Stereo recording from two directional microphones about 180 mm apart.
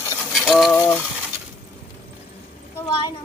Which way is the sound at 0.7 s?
10° left (ahead or behind).